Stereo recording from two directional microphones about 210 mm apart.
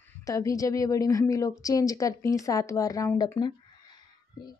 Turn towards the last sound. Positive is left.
turn(degrees=15)  # may be behind; listen again after turning